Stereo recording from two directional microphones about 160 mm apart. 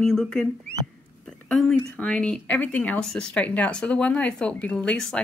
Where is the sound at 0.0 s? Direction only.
5° left (ahead or behind).